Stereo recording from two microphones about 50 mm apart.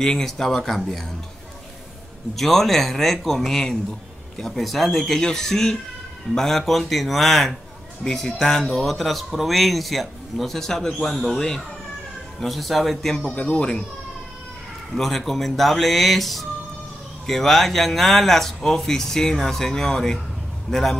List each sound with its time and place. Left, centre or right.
0.0 s speech: centre
2.3 s speech: centre
13.3 s speech: left
15.0 s speech: centre